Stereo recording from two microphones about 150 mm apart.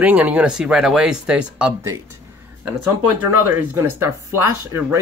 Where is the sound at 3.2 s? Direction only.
15° right (ahead or behind).